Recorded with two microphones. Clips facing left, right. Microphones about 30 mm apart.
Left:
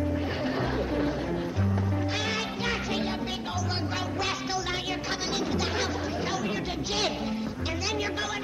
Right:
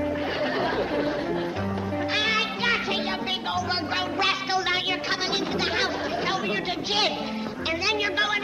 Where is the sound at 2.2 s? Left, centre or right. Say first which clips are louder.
Right 6 dB; right.